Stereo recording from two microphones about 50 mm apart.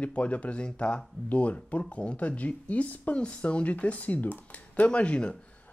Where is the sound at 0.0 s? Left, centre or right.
Left.